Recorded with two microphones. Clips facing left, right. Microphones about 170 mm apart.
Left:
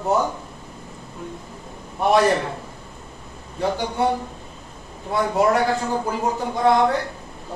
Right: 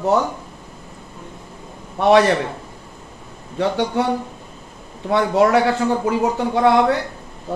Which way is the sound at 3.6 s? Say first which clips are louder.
Right 3 dB; 80° right.